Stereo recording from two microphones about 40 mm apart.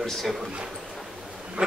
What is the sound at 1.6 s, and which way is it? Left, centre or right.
Insect, right.